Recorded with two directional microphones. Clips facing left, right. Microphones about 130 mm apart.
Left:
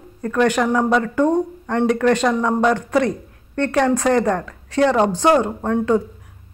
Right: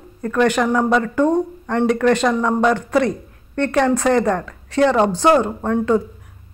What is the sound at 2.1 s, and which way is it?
Speech, 15° left (ahead or behind).